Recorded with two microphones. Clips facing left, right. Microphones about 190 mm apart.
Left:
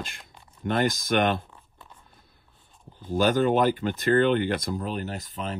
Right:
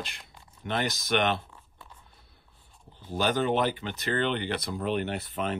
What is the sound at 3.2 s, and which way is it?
Speech, 45° left (ahead or behind).